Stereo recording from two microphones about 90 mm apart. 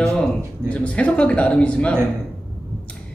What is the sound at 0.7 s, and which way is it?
Speech, 15° left (ahead or behind).